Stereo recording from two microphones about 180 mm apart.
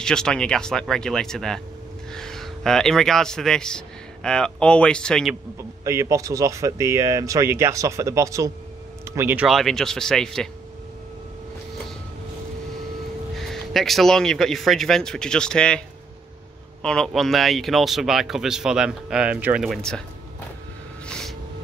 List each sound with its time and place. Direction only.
0.0 s a man's voice: 5° left (ahead or behind)
5.6 s speech: 15° right (ahead or behind)
9.5 s speech: centre (ahead or behind)
13.4 s speech: centre (ahead or behind)
16.8 s speech: 5° left (ahead or behind)